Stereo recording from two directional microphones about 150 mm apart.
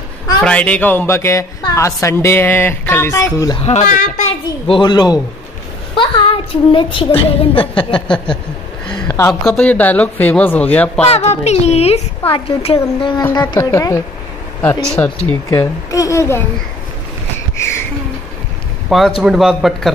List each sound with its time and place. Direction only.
0.4 s a woman's voice: 10° left (ahead or behind)
3.6 s a woman's voice: 55° left (ahead or behind)
4.6 s a woman's voice: 30° left (ahead or behind)
8.8 s a sound: 5° left (ahead or behind)
9.3 s a woman's voice: 5° left (ahead or behind)
11.1 s a woman's voice: 45° left (ahead or behind)
13.2 s a woman's voice: 15° left (ahead or behind)
15.9 s speech: 20° left (ahead or behind)
18.9 s a man's voice: centre (ahead or behind)